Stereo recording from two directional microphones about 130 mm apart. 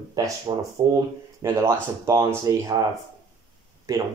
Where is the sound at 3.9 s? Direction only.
25° right (ahead or behind).